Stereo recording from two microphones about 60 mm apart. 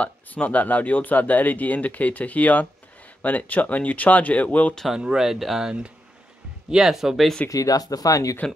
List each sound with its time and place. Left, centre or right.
0.0 s speech: left
4.9 s speech: centre
7.4 s speech: left